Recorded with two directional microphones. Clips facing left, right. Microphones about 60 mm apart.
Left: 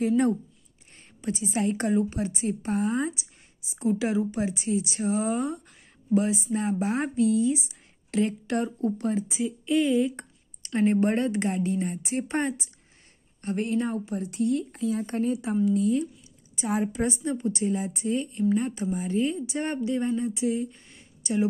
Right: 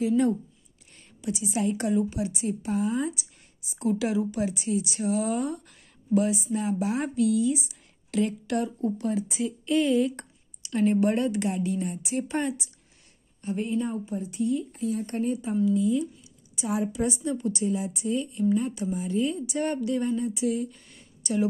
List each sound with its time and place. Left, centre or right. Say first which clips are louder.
1.2 s a woman's voice: even; left
2.7 s speech: even; left
3.0 s a sound: even; left
4.3 s a woman's voice: even; left
9.3 s speech: even; centre
10.6 s a woman's voice: even; left
13.4 s speech: left 1 dB; left
15.6 s speech: even; left
16.5 s a woman's voice: left 1 dB; left